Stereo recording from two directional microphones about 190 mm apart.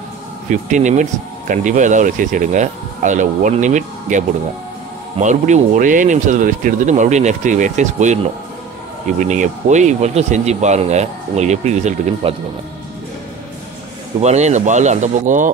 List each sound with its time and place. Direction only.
0.5 s speech: 40° right (ahead or behind)
5.2 s speech: 40° right (ahead or behind)
14.2 s speech: 35° right (ahead or behind)